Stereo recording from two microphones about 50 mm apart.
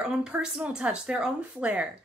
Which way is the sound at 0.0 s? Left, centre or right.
Centre.